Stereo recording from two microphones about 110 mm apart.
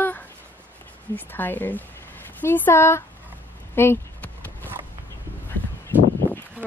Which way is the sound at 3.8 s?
20° left (ahead or behind).